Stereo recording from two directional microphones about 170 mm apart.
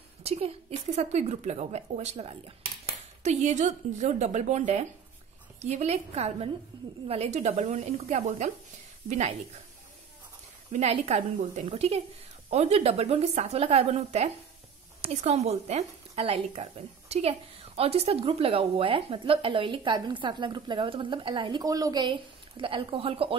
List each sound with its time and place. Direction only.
0.2 s a woman's voice: 35° right (ahead or behind)
10.7 s a woman's voice: 40° right (ahead or behind)